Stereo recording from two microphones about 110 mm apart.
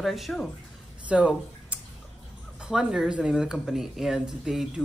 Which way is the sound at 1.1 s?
10° right (ahead or behind).